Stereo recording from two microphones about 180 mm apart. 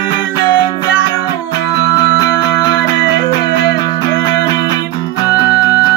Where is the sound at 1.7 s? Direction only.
20° left (ahead or behind).